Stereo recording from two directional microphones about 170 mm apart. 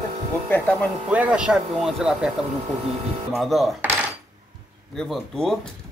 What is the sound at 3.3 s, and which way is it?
Speech, centre (ahead or behind).